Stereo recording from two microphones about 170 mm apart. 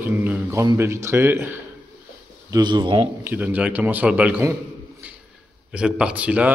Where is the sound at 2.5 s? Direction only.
25° right (ahead or behind).